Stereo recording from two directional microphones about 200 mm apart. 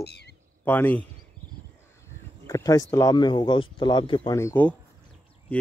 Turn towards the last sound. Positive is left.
turn(degrees=10)  # may be behind; listen again after turning